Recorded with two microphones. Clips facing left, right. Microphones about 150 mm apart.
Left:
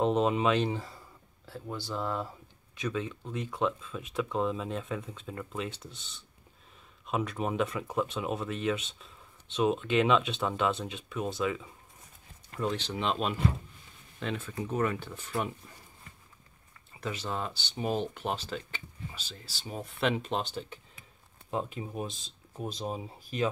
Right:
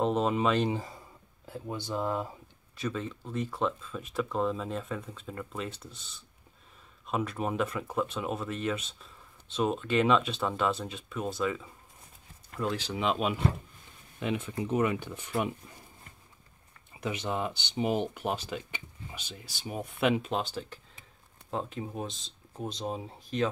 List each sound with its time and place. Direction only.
0.0 s speech: centre (ahead or behind)
0.7 s speech: 15° right (ahead or behind)
2.8 s speech: centre (ahead or behind)
17.0 s speech: 15° right (ahead or behind); by 23.5 s 5° left (ahead or behind)